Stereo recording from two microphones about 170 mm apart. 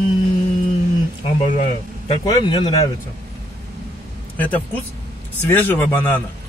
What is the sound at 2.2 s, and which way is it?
Speech, 25° left (ahead or behind).